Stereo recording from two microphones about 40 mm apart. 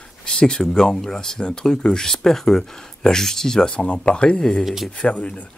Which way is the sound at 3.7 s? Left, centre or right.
Left.